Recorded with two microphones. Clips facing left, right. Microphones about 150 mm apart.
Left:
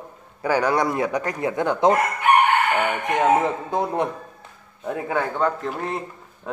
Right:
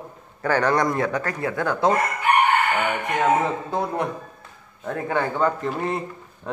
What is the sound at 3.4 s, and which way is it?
Speech, 20° left (ahead or behind).